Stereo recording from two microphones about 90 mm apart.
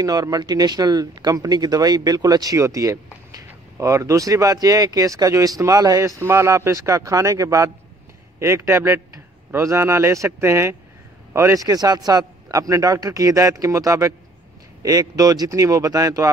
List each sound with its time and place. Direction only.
0.0 s a man's voice: 45° right (ahead or behind)